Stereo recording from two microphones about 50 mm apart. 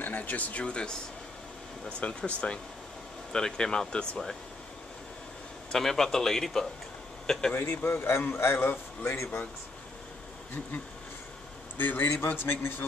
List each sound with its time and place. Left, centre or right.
0.0 s a man's voice: left; by 4.2 s centre
5.7 s a man's voice: centre
7.7 s a man's voice: left
11.8 s a man's voice: left